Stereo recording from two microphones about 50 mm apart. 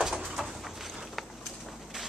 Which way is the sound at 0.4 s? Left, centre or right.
Centre.